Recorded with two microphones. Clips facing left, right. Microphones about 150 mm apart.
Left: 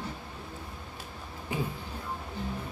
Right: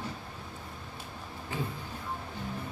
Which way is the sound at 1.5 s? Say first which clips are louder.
Left 3 dB; 15° left (ahead or behind).